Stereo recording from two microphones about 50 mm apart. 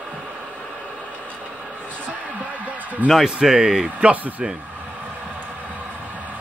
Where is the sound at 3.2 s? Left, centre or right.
Centre.